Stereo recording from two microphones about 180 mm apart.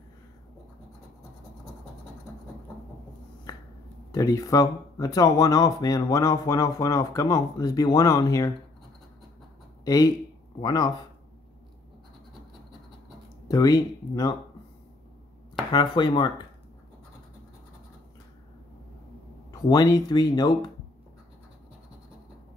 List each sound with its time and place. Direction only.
4.1 s speech: 20° left (ahead or behind)
9.8 s speech: 20° left (ahead or behind)
13.5 s speech: 20° left (ahead or behind)
15.7 s speech: 25° left (ahead or behind)
19.5 s speech: 20° left (ahead or behind)